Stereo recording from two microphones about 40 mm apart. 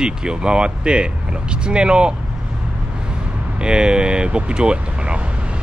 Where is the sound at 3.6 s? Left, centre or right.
Right.